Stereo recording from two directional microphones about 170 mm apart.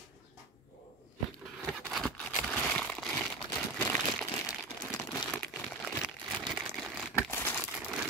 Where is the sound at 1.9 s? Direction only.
5° left (ahead or behind).